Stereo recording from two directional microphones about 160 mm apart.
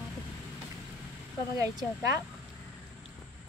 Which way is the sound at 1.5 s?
20° right (ahead or behind).